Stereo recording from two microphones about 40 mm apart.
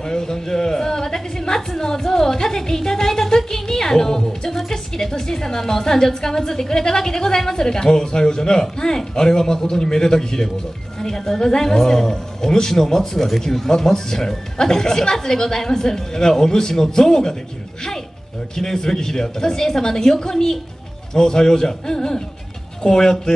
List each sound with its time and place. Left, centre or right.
0.0 s a sound: centre
1.7 s speech: centre
18.6 s speech: centre